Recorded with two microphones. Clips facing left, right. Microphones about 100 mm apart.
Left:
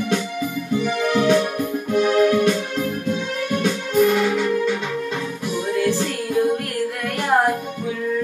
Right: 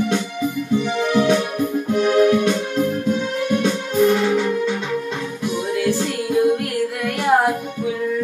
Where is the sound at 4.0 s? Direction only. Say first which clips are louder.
Right 1 dB; 20° right (ahead or behind).